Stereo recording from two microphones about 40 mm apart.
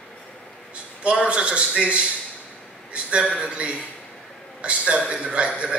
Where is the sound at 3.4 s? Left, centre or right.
Right.